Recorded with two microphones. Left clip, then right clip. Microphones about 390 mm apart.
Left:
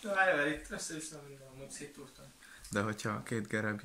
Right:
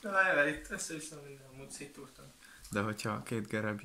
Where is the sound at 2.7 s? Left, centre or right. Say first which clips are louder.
Even; centre.